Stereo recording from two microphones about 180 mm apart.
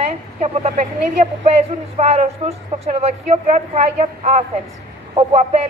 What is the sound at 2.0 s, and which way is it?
A man's voice, 35° right (ahead or behind).